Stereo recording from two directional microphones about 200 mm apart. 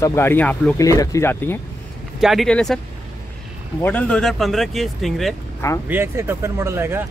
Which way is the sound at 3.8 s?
5° left (ahead or behind).